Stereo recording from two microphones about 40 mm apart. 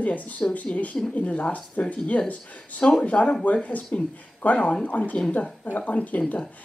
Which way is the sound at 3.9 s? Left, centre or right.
Left.